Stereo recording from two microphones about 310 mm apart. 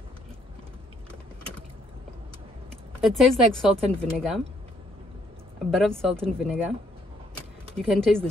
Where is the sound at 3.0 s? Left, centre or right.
Centre.